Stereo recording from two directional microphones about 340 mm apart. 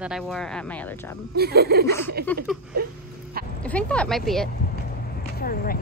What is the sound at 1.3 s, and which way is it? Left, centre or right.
Speech, right.